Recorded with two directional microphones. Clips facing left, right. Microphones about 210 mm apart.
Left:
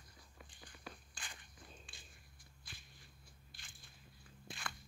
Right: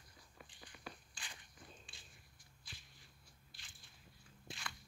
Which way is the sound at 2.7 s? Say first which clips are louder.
Even; 55° left (ahead or behind).